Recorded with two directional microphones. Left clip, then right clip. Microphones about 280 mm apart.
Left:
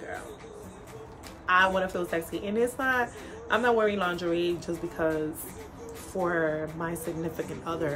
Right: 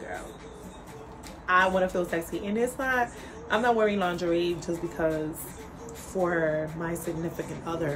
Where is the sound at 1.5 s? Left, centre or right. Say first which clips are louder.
Right 1 dB; centre.